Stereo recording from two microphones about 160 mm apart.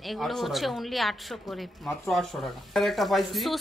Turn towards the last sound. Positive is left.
turn(degrees=0)  # may be behind; listen again after turning